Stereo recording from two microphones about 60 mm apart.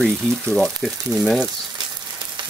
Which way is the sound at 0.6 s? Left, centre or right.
Centre.